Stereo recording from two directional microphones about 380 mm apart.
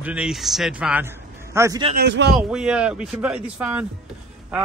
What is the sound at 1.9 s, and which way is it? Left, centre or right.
Speech, right.